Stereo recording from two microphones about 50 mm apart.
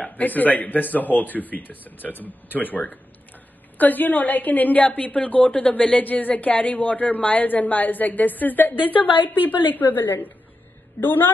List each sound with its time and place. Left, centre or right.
0.0 s a woman's voice: left